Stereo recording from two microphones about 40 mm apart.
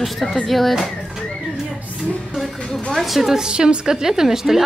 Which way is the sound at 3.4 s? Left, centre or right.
Centre.